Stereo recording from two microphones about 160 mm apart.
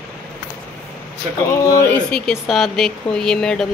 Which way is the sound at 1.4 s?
15° left (ahead or behind).